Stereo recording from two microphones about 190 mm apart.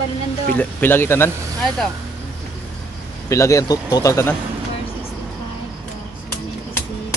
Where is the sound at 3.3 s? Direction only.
15° left (ahead or behind).